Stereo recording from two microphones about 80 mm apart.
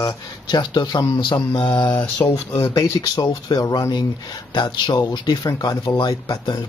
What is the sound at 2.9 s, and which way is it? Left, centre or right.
Speech, left.